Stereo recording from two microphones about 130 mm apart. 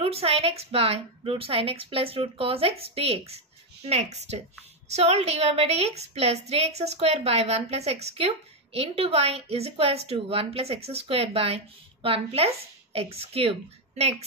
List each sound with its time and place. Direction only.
0.0 s a woman's voice: 50° right (ahead or behind)